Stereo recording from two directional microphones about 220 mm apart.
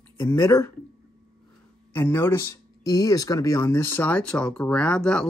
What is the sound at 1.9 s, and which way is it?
Speech, 10° left (ahead or behind).